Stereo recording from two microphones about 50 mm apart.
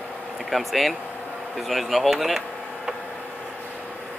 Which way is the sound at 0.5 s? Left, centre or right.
Centre.